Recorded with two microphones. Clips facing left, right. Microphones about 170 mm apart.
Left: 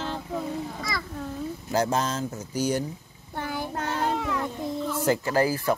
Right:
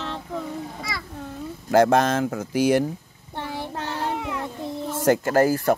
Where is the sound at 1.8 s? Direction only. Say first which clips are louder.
Right 7 dB; 65° right (ahead or behind); by 2.8 s 90° right.